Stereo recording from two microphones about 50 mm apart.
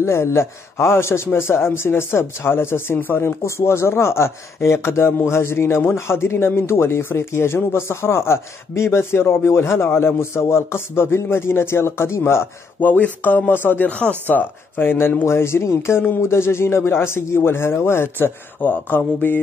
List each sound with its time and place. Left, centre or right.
0.0 s speech: left
3.4 s speech: left
12.8 s a sound: left
13.5 s mantra: left
13.8 s speech: left
14.2 s speech: left
18.6 s mantra: left